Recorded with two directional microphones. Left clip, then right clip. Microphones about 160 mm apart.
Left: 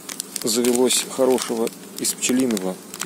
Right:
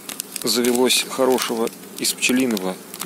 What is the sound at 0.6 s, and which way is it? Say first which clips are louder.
Speech: right 1 dB; 5° left (ahead or behind).